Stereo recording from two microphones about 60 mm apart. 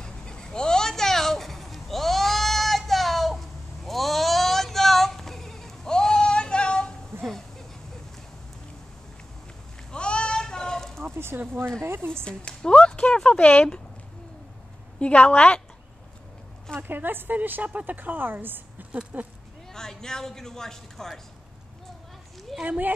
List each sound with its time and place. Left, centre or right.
0.0 s a sound: centre
9.8 s sheep: centre
11.1 s a sound: right
11.8 s a woman's voice: right
12.3 s speech: centre
15.0 s a woman's voice: centre
16.7 s a woman's voice: right
18.9 s speech: centre
19.7 s a man's voice: centre
22.6 s speech: right